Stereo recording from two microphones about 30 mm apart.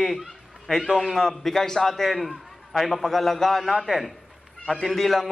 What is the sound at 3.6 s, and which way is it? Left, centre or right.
A man's voice, centre.